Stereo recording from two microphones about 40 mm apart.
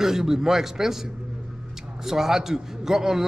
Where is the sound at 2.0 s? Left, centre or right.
Centre.